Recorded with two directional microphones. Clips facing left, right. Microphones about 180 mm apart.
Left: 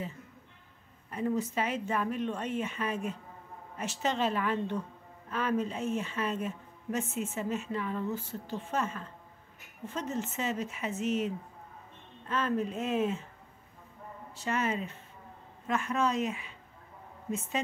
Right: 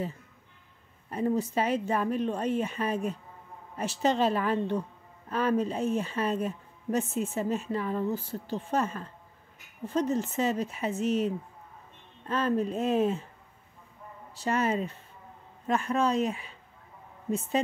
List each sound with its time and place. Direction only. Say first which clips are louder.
1.1 s speech: right 3 dB; 35° right (ahead or behind)
14.3 s speech: right 4 dB; 35° right (ahead or behind)